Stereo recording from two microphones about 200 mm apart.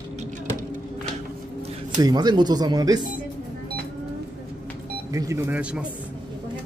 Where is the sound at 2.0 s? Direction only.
20° right (ahead or behind).